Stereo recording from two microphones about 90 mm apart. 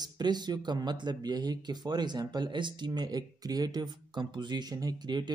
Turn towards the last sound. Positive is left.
turn(degrees=-55)  # may be behind; listen again after turning